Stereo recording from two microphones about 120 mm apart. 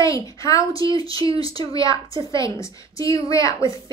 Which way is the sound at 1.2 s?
50° right (ahead or behind).